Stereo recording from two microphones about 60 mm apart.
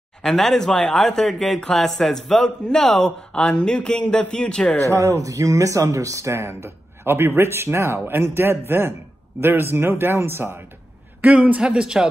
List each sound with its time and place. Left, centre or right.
0.2 s a man's voice: centre
4.8 s speech: right
6.3 s a man's voice: right
11.3 s a man's voice: centre